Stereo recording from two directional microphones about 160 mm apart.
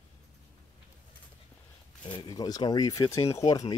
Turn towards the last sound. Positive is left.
turn(degrees=20)  # may be behind; listen again after turning